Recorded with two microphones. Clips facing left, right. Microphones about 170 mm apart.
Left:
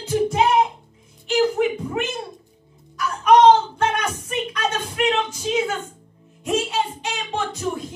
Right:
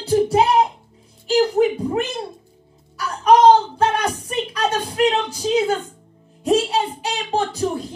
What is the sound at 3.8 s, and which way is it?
A child's voice, 35° right (ahead or behind).